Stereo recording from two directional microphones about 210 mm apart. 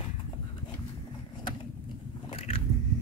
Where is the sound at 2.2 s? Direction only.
25° left (ahead or behind).